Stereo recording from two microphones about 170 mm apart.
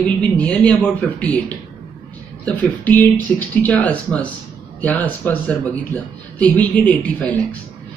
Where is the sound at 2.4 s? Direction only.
10° left (ahead or behind).